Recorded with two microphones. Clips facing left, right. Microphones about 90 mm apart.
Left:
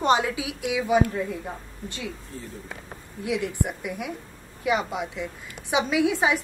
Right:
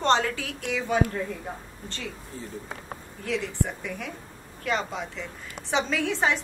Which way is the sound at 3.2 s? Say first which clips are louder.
Left 2 dB; 15° left (ahead or behind).